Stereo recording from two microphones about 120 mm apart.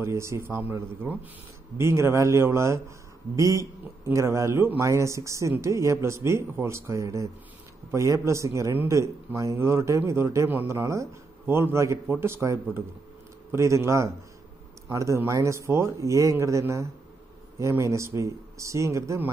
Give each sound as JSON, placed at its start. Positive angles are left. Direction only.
{"t": 0.0, "sound": "speech", "side_deg": -25}